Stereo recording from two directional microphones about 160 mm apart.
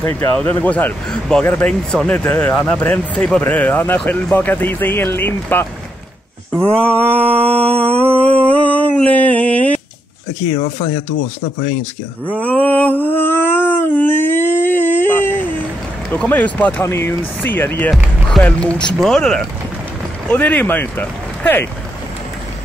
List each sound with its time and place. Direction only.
0.2 s speech: 5° left (ahead or behind)
6.5 s mantra: 5° left (ahead or behind)
8.4 s a sound: 10° left (ahead or behind)
10.5 s speech: 45° left (ahead or behind)
12.4 s a sound: 10° left (ahead or behind)
16.1 s speech: 10° left (ahead or behind)